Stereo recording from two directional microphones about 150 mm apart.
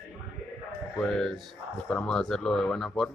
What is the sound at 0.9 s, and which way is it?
Speech, 5° left (ahead or behind).